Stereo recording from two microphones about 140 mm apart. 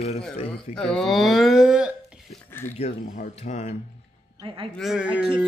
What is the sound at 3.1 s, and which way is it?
Speech, 60° left (ahead or behind).